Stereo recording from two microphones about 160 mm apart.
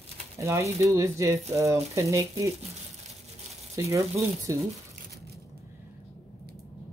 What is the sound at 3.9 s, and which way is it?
Speech, 20° right (ahead or behind).